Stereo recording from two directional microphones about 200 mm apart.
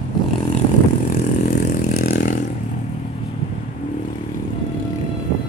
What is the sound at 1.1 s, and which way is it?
Vehicle, 40° left (ahead or behind).